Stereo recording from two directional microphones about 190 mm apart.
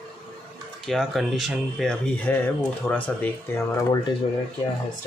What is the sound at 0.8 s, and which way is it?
Speech, centre (ahead or behind).